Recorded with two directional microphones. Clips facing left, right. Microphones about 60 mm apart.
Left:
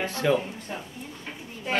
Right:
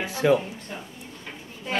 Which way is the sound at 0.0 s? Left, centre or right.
Centre.